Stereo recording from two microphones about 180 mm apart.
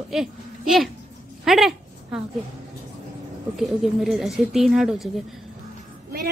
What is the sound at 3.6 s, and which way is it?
A woman's voice, centre (ahead or behind).